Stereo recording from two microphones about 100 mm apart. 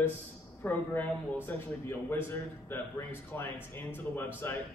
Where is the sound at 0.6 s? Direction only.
15° left (ahead or behind).